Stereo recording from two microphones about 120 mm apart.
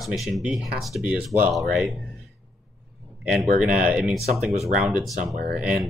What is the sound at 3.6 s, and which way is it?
Speech, 10° right (ahead or behind).